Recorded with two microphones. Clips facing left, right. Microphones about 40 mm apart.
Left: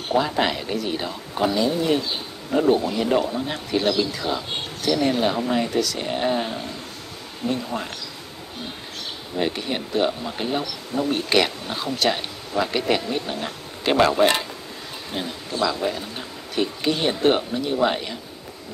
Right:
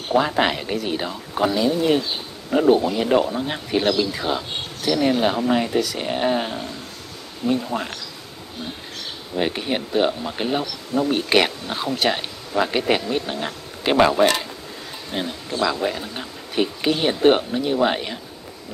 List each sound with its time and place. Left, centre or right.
0.1 s speech: centre
9.4 s speech: centre